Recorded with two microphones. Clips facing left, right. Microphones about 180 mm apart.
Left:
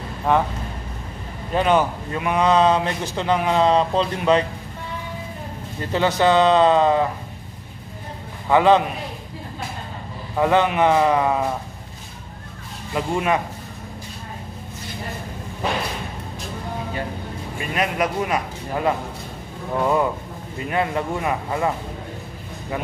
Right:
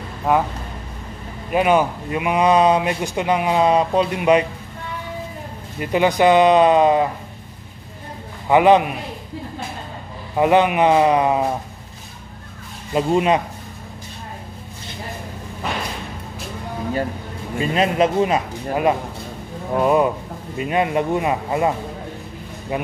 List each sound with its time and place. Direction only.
0.3 s a man's voice: 5° right (ahead or behind)
1.5 s a man's voice: 10° right (ahead or behind)
5.8 s a man's voice: 15° right (ahead or behind)
8.5 s a man's voice: 15° right (ahead or behind)
10.3 s a man's voice: 15° right (ahead or behind)
12.9 s speech: 20° right (ahead or behind)
17.6 s speech: 25° right (ahead or behind)